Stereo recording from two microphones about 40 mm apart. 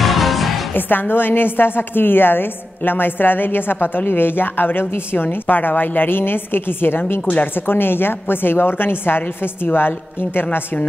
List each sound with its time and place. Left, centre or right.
0.0 s music: centre
0.7 s a woman's voice: left